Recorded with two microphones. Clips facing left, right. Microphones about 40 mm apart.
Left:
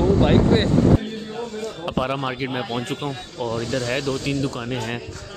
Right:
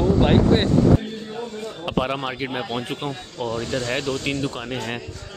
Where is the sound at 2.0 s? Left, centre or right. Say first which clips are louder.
Even; centre.